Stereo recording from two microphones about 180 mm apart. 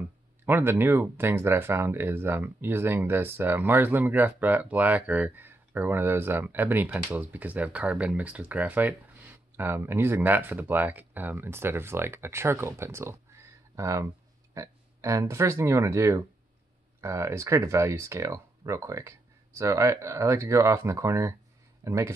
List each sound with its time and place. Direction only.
0.5 s speech: 10° right (ahead or behind)